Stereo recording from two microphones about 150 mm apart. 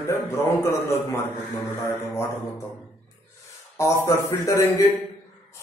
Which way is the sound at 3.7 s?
15° left (ahead or behind).